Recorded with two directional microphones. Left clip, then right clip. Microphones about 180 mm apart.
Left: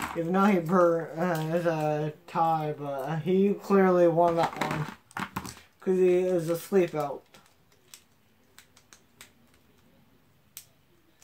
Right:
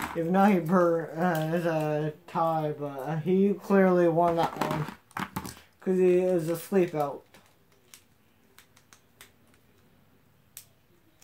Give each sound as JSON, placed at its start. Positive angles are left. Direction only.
{"t": 0.1, "sound": "speech", "side_deg": -20}
{"t": 4.8, "sound": "a sound", "side_deg": 0}
{"t": 5.9, "sound": "speech", "side_deg": -15}